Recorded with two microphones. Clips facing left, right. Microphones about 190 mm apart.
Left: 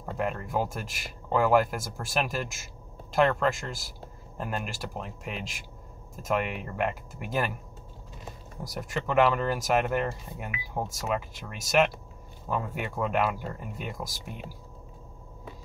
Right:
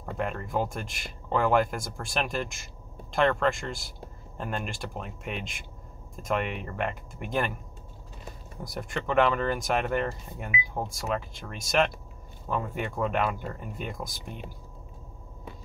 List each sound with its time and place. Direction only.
0.2 s speech: 5° left (ahead or behind)
8.7 s speech: 5° left (ahead or behind)